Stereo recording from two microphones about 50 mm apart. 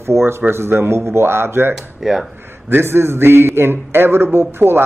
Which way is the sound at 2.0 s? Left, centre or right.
Centre.